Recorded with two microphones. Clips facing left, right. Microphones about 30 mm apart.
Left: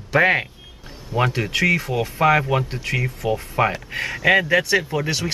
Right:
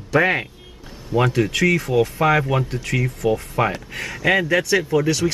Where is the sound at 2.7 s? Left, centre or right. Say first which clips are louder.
Right 1 dB; centre.